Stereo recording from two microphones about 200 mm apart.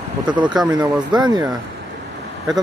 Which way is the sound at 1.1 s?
20° right (ahead or behind).